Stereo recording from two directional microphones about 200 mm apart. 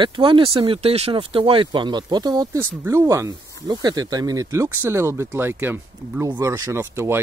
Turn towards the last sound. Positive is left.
turn(degrees=-10)  # may be behind; listen again after turning